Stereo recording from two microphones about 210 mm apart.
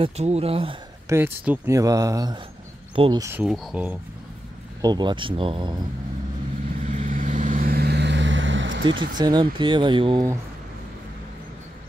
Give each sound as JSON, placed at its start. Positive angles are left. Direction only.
{"t": 0.0, "sound": "speech", "side_deg": -30}
{"t": 1.0, "sound": "speech", "side_deg": -10}
{"t": 4.8, "sound": "speech", "side_deg": -20}
{"t": 6.9, "sound": "vehicle", "side_deg": -35}
{"t": 9.2, "sound": "speech", "side_deg": -20}